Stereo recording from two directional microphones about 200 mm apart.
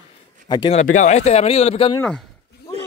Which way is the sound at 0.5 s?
30° left (ahead or behind).